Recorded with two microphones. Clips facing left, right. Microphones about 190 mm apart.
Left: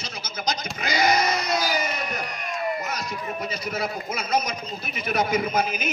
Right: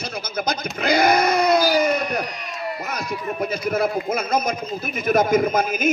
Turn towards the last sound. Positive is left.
turn(degrees=-50)  # may be behind; listen again after turning